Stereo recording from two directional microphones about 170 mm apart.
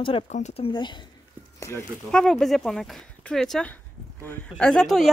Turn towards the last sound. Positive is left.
turn(degrees=0)  # may be behind; listen again after turning